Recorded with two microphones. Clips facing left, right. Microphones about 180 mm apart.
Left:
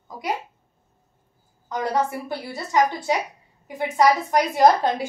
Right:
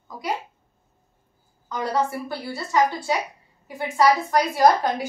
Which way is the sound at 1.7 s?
20° left (ahead or behind).